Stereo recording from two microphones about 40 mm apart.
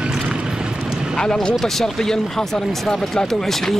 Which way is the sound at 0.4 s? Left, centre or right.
Centre.